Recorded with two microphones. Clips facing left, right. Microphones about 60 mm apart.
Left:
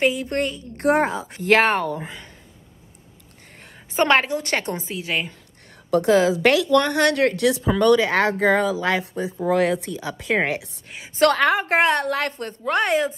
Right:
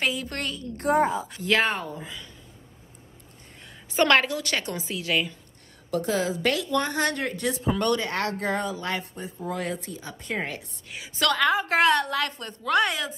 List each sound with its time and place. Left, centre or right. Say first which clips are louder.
0.0 s a woman's voice: left 7 dB; left
0.7 s a woman's voice: left 3 dB; left
1.3 s speech: left 6 dB; left
3.9 s a woman's voice: left 2 dB; left
5.9 s a woman's voice: left 9 dB; left
10.9 s a woman's voice: left 9 dB; left
11.2 s speech: left 5 dB; left
11.6 s a woman's voice: left 2 dB; left